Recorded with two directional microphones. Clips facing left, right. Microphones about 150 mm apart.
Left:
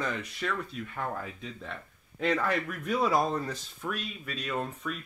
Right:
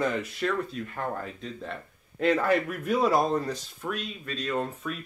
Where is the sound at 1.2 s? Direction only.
Centre (ahead or behind).